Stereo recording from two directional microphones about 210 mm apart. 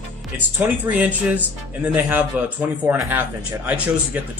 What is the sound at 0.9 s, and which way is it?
Speech, 5° right (ahead or behind).